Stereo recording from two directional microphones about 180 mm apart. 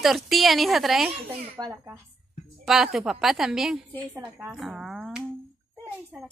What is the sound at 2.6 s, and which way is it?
A woman's voice, centre (ahead or behind).